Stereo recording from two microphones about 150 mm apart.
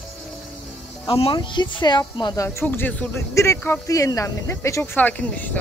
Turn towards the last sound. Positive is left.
turn(degrees=10)  # may be behind; listen again after turning